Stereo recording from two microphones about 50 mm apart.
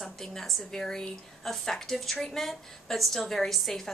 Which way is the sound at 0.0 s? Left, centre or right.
Centre.